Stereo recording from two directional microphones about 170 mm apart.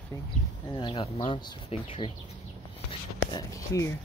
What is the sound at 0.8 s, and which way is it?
Speech, 30° left (ahead or behind).